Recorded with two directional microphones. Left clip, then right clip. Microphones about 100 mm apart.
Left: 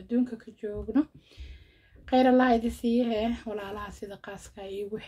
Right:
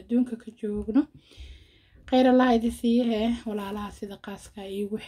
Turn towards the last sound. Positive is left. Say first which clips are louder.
# right 3 dB
turn(degrees=-30)  # may be behind; listen again after turning